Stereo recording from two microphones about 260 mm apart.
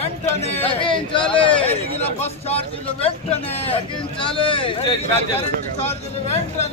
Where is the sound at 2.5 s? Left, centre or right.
Left.